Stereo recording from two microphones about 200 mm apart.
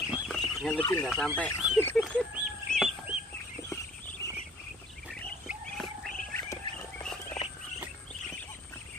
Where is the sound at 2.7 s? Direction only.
Centre (ahead or behind).